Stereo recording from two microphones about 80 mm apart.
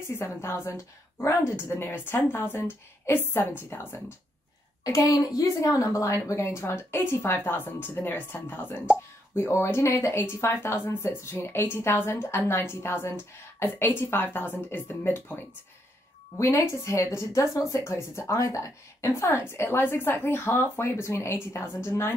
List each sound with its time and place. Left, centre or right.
0.2 s a woman's voice: left
4.8 s a woman's voice: left
16.3 s a woman's voice: left